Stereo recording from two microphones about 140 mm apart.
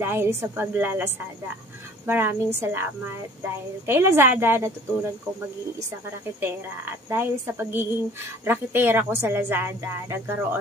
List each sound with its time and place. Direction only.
0.0 s a woman's voice: 15° right (ahead or behind)
6.4 s a woman's voice: 15° right (ahead or behind)